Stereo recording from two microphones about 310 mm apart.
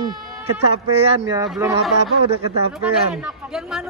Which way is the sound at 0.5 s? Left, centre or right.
Right.